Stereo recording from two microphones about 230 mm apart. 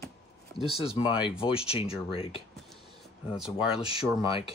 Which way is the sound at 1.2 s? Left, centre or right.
Left.